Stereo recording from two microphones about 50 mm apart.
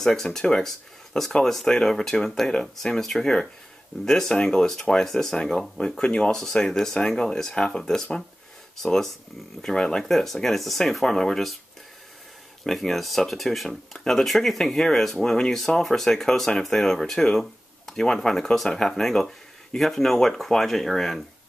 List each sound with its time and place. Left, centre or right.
0.0 s speech: centre
12.6 s speech: centre